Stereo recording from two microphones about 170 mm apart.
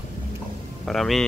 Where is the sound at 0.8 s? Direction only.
Centre (ahead or behind).